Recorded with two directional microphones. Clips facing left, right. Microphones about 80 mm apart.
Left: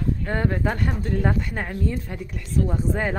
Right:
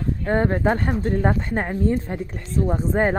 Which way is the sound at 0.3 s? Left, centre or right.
Right.